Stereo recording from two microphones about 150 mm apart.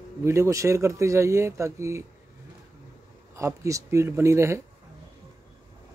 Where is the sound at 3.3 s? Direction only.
20° right (ahead or behind).